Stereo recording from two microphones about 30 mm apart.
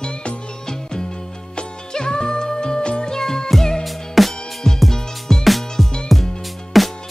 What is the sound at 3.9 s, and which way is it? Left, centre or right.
Music, centre.